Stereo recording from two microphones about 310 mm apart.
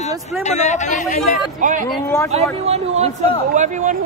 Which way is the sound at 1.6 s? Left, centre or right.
Right.